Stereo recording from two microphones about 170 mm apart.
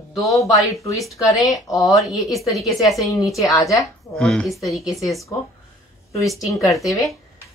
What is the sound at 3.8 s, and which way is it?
Speech, 5° left (ahead or behind).